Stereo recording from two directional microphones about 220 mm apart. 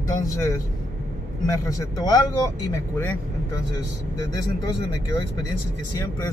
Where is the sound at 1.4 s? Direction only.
15° left (ahead or behind).